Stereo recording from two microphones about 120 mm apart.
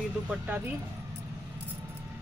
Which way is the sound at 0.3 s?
15° right (ahead or behind).